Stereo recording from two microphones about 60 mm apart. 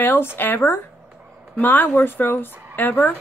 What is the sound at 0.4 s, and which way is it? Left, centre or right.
Speech, left.